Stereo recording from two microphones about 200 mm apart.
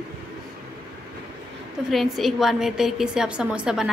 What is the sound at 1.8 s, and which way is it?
A woman's voice, centre (ahead or behind).